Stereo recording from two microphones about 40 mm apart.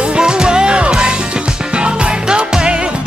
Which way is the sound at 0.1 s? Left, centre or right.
Right.